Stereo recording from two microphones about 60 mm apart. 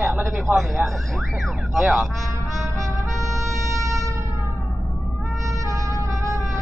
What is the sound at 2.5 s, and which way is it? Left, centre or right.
Music, right.